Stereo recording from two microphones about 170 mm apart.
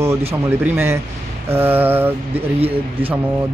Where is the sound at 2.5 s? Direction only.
35° right (ahead or behind).